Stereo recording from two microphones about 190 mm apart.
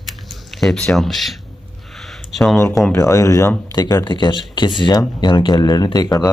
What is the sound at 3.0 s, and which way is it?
Speech, 15° left (ahead or behind).